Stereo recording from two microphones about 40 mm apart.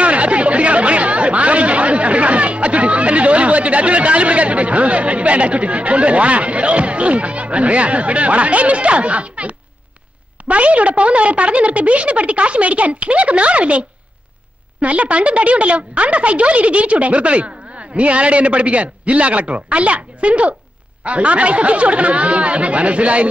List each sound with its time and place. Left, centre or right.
0.0 s chatter: right
10.5 s a woman's voice: right